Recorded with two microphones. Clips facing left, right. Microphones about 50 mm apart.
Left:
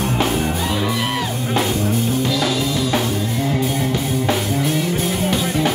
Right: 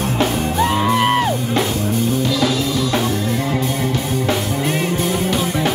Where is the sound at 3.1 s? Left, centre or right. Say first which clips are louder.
Right 1 dB; centre.